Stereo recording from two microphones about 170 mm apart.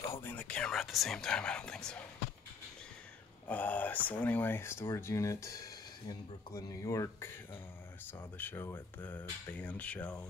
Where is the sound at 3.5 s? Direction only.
10° left (ahead or behind).